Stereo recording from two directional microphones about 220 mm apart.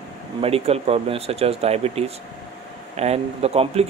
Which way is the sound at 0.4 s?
25° right (ahead or behind).